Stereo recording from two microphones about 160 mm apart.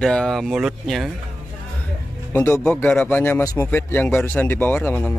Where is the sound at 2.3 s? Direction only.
15° left (ahead or behind).